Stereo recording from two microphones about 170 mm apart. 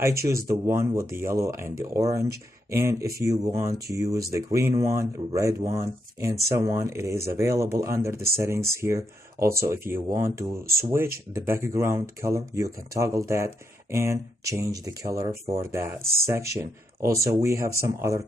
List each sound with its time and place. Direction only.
0.3 s speech: 15° right (ahead or behind)